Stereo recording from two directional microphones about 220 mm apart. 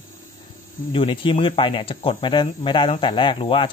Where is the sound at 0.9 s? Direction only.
25° left (ahead or behind).